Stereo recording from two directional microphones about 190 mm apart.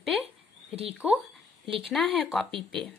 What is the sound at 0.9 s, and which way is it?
A woman's voice, 5° right (ahead or behind).